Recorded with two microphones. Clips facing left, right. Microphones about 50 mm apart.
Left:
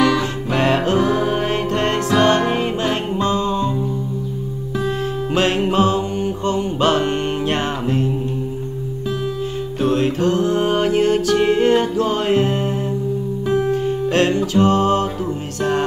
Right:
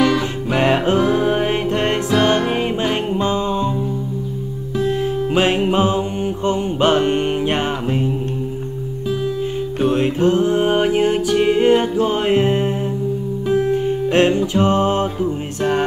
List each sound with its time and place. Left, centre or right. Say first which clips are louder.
0.0 s music: even; centre
0.6 s music: right 1 dB; right
4.8 s music: right 4 dB; centre
9.8 s music: right 1 dB; centre